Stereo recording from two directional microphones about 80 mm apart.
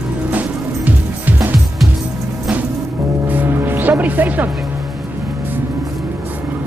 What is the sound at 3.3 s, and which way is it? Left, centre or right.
Music, right.